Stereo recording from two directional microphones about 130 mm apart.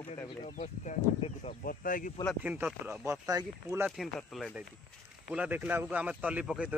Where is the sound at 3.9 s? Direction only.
Centre (ahead or behind).